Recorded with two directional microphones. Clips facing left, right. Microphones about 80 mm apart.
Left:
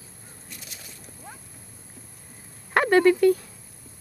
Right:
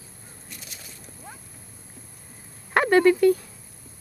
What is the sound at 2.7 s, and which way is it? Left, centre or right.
Speech, centre.